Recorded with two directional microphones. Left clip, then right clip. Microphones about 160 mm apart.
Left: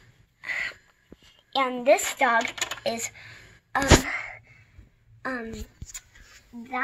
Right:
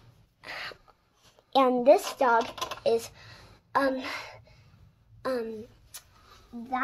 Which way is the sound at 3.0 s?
25° right (ahead or behind).